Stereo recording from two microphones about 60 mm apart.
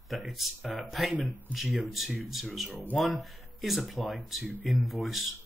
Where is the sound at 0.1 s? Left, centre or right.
Centre.